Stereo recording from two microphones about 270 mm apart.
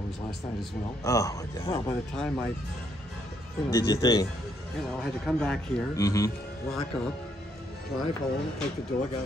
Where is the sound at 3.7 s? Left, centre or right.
Centre.